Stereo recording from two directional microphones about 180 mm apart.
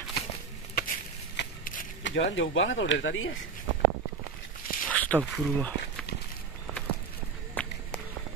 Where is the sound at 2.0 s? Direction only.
80° left.